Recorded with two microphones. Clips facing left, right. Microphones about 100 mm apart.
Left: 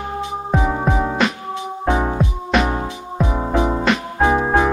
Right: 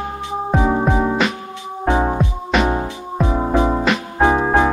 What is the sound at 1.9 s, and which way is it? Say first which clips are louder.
Music: right 3 dB; 25° right (ahead or behind).